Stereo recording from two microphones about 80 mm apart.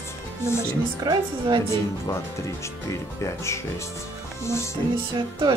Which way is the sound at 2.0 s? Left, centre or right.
Left.